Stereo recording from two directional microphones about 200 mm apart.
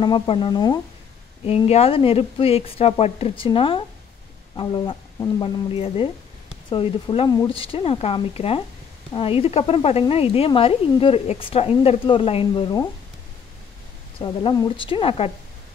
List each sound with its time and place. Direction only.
0.0 s speech: 25° left (ahead or behind)
14.2 s speech: 20° left (ahead or behind)